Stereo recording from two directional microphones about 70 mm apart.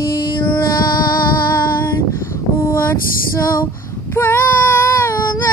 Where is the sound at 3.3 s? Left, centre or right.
Left.